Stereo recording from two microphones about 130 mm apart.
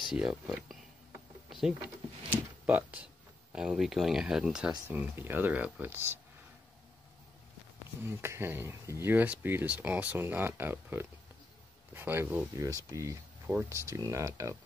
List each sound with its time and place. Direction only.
0.1 s speech: 5° right (ahead or behind)
2.2 s a sound: 10° right (ahead or behind)
3.5 s speech: 5° right (ahead or behind)
8.0 s speech: 20° right (ahead or behind)